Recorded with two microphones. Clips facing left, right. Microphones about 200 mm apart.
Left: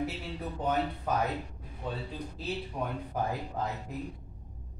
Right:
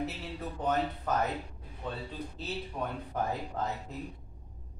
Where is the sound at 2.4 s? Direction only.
10° left (ahead or behind).